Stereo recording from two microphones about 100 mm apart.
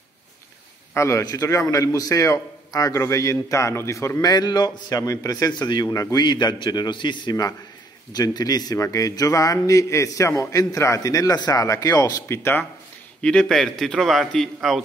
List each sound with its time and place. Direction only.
0.9 s a man's voice: 30° left (ahead or behind)
4.2 s a man's voice: 45° left (ahead or behind)
12.3 s speech: 20° left (ahead or behind)
13.2 s a man's voice: 5° left (ahead or behind)